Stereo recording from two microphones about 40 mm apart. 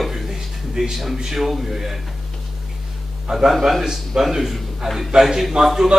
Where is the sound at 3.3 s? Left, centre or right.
Centre.